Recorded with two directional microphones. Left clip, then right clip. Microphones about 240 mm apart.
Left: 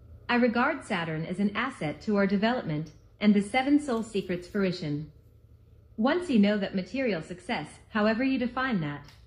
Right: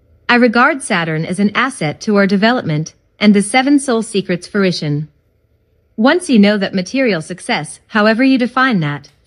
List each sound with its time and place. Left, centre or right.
0.3 s speech: right
5.9 s speech: right